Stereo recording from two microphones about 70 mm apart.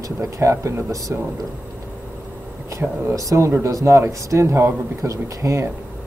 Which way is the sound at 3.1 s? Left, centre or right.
Right.